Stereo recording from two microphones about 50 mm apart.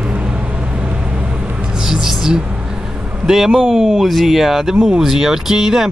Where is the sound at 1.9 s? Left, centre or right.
Centre.